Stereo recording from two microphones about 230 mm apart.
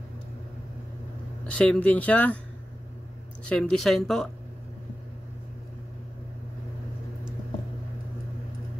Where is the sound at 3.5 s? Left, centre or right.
Centre.